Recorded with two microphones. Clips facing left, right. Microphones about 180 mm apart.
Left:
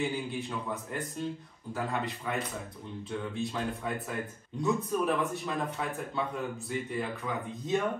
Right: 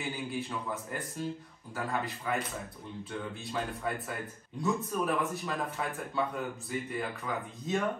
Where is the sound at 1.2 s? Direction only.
Centre (ahead or behind).